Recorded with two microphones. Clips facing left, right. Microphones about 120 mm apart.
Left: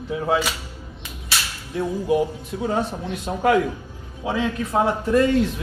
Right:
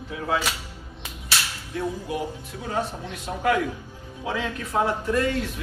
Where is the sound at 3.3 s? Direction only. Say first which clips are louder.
Left 4 dB; 30° left (ahead or behind).